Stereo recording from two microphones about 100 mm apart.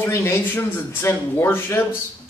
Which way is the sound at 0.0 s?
25° left (ahead or behind).